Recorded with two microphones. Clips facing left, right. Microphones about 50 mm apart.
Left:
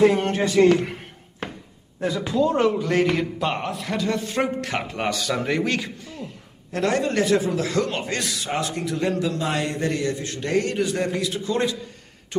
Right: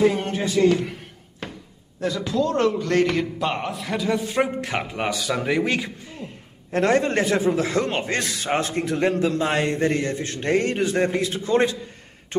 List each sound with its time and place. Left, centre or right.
0.0 s music: left
1.4 s a sound: left
2.0 s a man's voice: centre
6.7 s a man's voice: right